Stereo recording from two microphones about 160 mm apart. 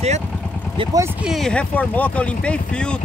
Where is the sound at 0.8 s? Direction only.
20° right (ahead or behind).